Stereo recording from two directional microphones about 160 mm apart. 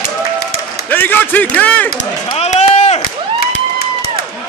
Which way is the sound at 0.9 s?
10° left (ahead or behind).